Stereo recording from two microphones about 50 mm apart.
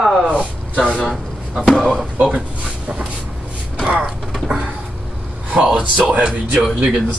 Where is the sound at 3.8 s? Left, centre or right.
Centre.